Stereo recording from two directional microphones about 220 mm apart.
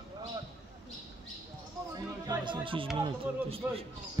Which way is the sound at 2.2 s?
20° right (ahead or behind).